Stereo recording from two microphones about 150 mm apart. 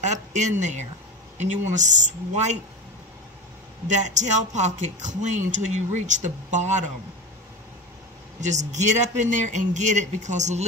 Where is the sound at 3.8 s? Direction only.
55° right (ahead or behind).